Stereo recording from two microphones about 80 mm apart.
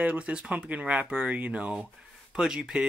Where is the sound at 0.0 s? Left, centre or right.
Centre.